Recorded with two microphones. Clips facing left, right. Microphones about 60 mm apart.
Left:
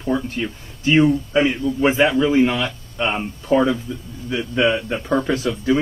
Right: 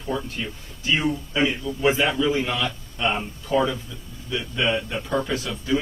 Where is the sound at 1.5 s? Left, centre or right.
Left.